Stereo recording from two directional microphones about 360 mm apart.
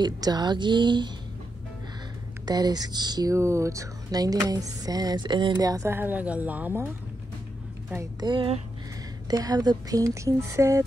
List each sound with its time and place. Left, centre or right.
0.0 s speech: centre
2.4 s speech: centre
7.9 s speech: centre